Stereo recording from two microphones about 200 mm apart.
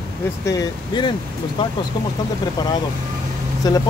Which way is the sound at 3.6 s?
20° left (ahead or behind).